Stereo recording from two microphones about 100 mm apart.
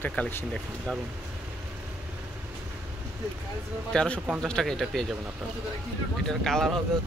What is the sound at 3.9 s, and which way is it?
Speech, 10° left (ahead or behind).